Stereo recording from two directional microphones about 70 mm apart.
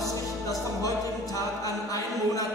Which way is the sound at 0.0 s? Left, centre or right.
Left.